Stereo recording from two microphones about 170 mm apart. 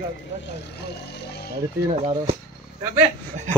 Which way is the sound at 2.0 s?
35° right (ahead or behind).